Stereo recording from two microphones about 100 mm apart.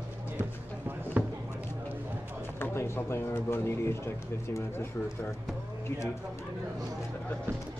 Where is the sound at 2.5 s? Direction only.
25° left (ahead or behind).